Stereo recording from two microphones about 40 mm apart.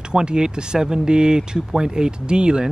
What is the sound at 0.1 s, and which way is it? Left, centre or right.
Speech, right.